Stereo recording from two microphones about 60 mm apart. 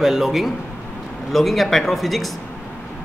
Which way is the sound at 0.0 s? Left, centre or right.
Centre.